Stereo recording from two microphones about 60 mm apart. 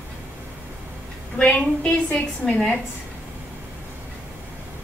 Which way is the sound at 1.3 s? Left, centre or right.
Centre.